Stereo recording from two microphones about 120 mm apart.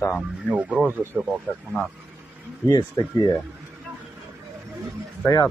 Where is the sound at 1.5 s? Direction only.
10° left (ahead or behind).